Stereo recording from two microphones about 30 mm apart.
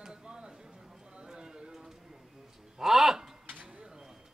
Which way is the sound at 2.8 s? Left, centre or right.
Centre.